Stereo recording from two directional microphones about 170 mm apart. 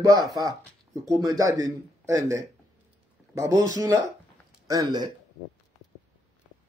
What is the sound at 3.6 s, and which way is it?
Speech, 20° right (ahead or behind).